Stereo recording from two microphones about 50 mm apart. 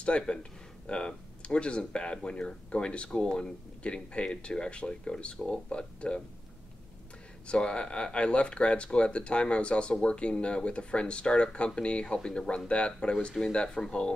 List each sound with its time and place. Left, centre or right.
0.0 s speech: left
7.4 s speech: left